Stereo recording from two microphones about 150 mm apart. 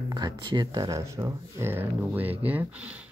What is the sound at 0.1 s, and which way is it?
Speech, 30° right (ahead or behind).